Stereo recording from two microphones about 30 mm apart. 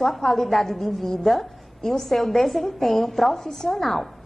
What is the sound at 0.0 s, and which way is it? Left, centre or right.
A woman's voice, centre.